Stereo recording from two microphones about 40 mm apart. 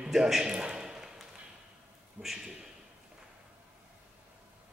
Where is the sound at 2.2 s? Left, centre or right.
Centre.